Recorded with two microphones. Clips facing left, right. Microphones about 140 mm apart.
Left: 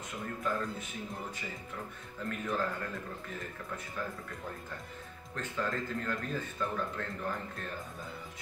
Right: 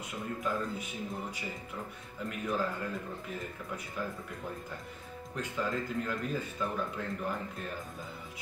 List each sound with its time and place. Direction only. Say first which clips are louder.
0.4 s speech: even; centre (ahead or behind)
2.2 s speech: right 1 dB; 10° right (ahead or behind)
5.3 s speech: right 1 dB; 10° right (ahead or behind)